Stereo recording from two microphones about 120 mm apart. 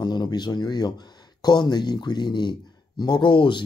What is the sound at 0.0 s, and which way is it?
Speech, 35° left (ahead or behind).